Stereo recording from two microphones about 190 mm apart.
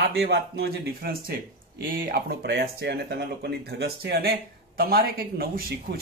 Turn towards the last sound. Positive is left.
turn(degrees=-55)  # may be behind; listen again after turning